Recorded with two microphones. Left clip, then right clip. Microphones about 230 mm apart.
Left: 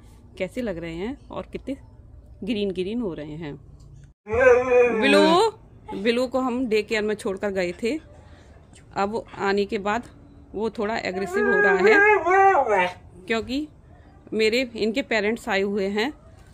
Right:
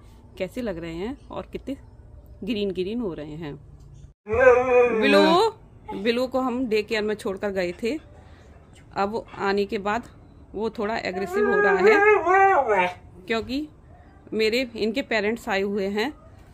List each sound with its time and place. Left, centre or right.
0.4 s a woman's voice: centre